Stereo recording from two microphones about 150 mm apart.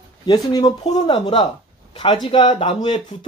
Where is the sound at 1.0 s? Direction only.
30° left (ahead or behind).